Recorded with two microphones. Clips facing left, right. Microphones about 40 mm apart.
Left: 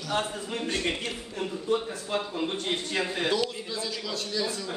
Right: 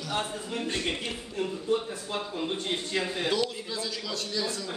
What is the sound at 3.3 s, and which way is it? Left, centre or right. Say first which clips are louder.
A man's voice: left 1 dB; centre.